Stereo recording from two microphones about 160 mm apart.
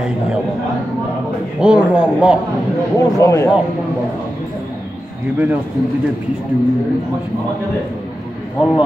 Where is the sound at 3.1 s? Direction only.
20° left (ahead or behind).